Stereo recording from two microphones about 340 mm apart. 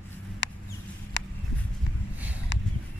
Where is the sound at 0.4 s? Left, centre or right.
Left.